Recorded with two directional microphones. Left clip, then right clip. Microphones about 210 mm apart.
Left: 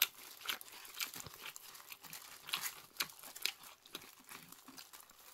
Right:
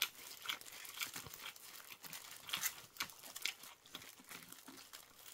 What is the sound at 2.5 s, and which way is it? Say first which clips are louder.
Biting: left 1 dB; 30° left (ahead or behind).